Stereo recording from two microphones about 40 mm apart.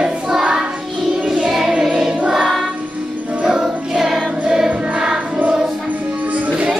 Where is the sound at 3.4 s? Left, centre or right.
Centre.